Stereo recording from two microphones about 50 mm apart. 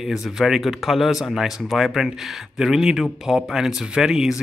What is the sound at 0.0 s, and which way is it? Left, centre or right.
Speech, centre.